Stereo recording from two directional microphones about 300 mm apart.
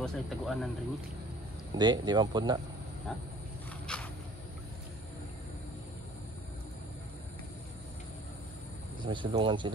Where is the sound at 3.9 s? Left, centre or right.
Centre.